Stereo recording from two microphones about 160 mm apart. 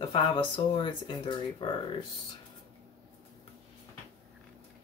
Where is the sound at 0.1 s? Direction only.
35° left (ahead or behind).